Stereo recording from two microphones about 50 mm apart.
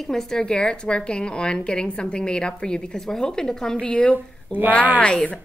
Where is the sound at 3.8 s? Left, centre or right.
Left.